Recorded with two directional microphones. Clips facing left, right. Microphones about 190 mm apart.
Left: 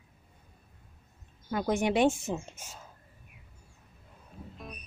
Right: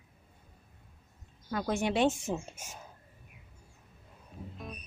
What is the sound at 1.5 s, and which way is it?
Speech, 15° left (ahead or behind).